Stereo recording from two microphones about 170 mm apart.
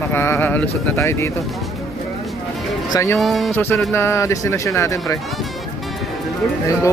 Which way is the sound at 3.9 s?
15° left (ahead or behind).